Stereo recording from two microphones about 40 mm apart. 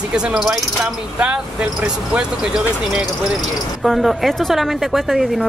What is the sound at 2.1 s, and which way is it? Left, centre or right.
Speech, centre.